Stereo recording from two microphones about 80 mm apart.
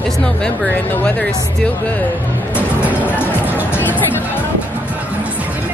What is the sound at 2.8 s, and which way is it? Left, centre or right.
Music, right.